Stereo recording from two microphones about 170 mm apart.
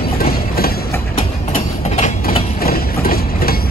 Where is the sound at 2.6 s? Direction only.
60° left (ahead or behind).